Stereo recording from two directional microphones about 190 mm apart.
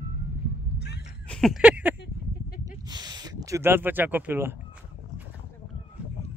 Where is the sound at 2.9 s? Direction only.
20° right (ahead or behind).